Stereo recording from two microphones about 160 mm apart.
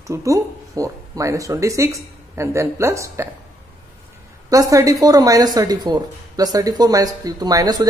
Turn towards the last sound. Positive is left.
turn(degrees=-25)  # may be behind; listen again after turning